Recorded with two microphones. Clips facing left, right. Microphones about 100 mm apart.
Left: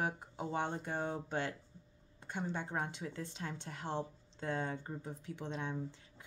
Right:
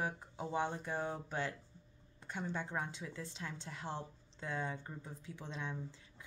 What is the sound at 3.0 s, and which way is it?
A woman's voice, 40° left (ahead or behind).